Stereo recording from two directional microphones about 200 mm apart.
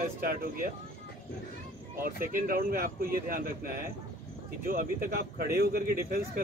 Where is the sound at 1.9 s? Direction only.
45° right (ahead or behind).